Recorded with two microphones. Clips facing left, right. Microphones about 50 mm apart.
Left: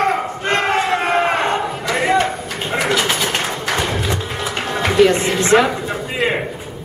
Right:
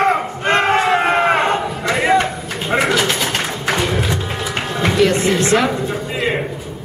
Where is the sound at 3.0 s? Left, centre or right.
Centre.